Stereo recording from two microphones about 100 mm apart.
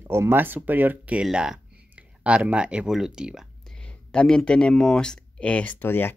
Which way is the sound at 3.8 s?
10° left (ahead or behind).